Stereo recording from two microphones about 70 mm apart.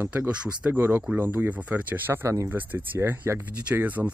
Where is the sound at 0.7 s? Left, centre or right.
Right.